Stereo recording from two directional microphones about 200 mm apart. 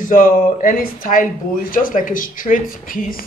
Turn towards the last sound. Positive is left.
turn(degrees=45)  # may be behind; listen again after turning